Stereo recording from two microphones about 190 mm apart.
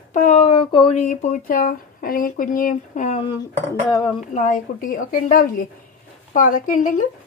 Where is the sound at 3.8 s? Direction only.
25° left (ahead or behind).